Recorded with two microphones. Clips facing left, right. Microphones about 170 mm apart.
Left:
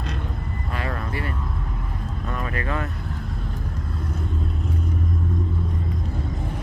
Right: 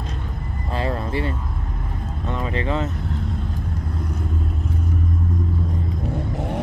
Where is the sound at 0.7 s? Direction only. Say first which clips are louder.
Right 6 dB; 25° right (ahead or behind).